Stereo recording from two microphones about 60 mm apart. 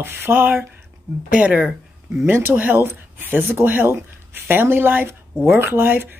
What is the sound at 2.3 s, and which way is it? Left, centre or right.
Speech, right.